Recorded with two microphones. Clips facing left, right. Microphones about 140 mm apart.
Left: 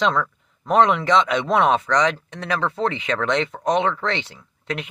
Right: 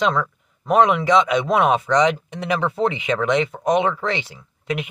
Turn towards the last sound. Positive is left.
turn(degrees=-10)  # may be behind; listen again after turning